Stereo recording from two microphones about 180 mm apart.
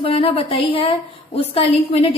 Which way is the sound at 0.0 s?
35° left (ahead or behind).